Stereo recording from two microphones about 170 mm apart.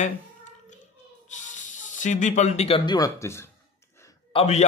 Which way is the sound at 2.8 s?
25° left (ahead or behind).